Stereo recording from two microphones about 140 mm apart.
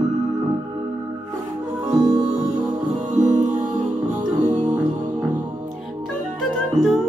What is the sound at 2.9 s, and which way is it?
Music, 60° right (ahead or behind).